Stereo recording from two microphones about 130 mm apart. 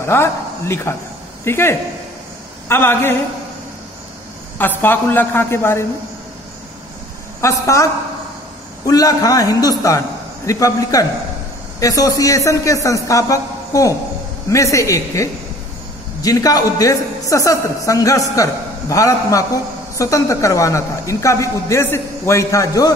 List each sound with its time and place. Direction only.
0.0 s a woman's voice: 20° left (ahead or behind)
4.6 s a woman's voice: 15° left (ahead or behind)
7.4 s a woman's voice: 25° left (ahead or behind)